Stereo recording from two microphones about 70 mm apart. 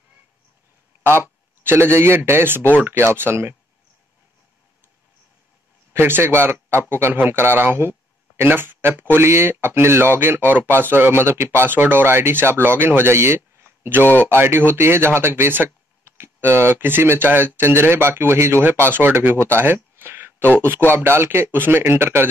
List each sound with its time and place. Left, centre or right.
1.0 s a man's voice: right
5.9 s speech: right